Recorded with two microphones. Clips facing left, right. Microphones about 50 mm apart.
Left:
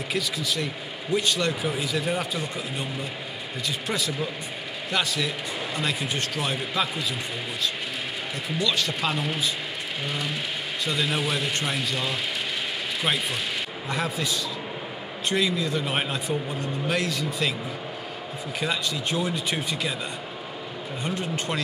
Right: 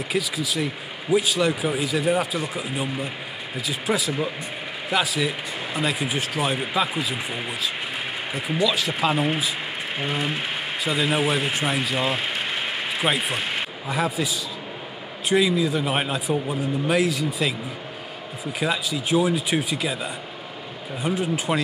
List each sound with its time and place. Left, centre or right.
0.1 s speech: centre
8.6 s speech: centre
9.1 s speech: right
10.8 s a man's voice: centre
13.0 s speech: centre
13.8 s speech: centre
18.6 s speech: centre
21.0 s speech: centre